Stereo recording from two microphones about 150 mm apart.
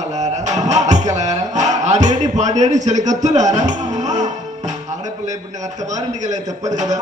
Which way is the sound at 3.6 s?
50° right (ahead or behind).